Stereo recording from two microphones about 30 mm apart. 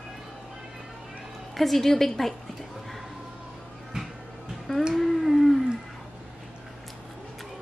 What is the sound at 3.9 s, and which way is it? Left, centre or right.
Music, right.